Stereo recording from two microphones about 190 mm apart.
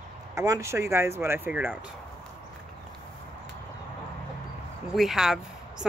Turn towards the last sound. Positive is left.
turn(degrees=-5)  # may be behind; listen again after turning